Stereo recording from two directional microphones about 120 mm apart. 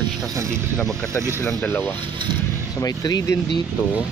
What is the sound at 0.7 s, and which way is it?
Speech, 5° left (ahead or behind).